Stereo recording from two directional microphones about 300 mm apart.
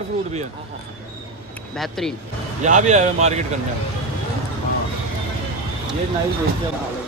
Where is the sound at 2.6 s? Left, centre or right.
Right.